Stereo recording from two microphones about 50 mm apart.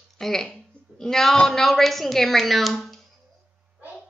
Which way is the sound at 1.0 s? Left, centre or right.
Centre.